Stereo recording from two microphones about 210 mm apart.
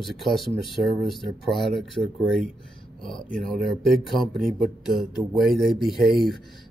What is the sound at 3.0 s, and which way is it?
Speech, centre (ahead or behind).